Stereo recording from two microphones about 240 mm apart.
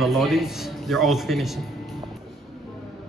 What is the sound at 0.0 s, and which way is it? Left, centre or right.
A man's voice, centre.